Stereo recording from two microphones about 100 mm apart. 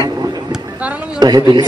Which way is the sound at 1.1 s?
45° right (ahead or behind).